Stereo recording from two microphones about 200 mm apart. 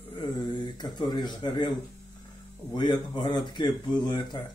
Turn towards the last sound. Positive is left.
turn(degrees=20)  # may be behind; listen again after turning